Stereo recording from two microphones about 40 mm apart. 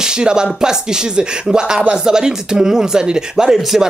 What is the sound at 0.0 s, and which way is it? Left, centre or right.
Speech, right.